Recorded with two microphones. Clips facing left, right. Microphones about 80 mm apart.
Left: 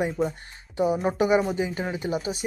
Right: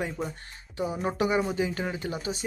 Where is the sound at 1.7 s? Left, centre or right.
Centre.